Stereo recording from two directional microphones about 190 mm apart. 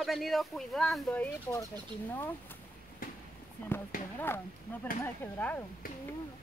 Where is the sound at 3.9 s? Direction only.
50° left (ahead or behind).